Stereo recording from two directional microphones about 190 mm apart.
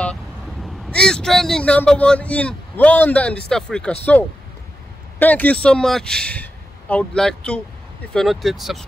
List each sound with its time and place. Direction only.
0.8 s a man's voice: 5° left (ahead or behind)
5.2 s a man's voice: 10° left (ahead or behind)